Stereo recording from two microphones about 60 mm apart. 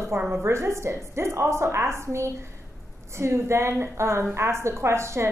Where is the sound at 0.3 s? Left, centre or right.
Right.